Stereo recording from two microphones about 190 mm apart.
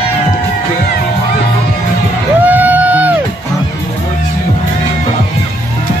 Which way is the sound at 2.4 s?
10° right (ahead or behind).